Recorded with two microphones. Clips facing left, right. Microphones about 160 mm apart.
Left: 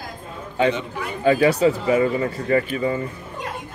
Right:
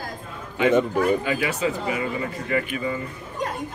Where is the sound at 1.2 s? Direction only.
35° left (ahead or behind).